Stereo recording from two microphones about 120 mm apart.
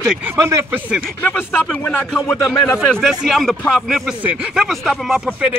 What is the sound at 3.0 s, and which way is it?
Speech, centre (ahead or behind).